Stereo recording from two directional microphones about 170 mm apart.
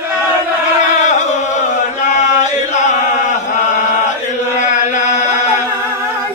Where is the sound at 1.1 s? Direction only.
45° left (ahead or behind).